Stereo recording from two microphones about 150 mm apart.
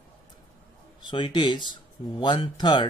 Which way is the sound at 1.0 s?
30° left (ahead or behind).